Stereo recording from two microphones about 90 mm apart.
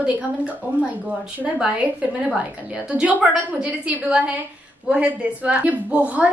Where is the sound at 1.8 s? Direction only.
15° right (ahead or behind).